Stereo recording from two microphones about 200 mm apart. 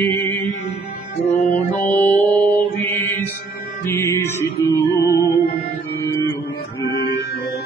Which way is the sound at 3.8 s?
15° left (ahead or behind).